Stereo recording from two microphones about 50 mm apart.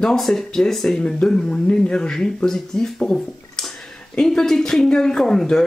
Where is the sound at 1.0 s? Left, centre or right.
Centre.